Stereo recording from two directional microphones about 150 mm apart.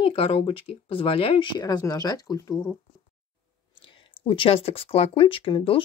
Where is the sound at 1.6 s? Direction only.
25° left (ahead or behind).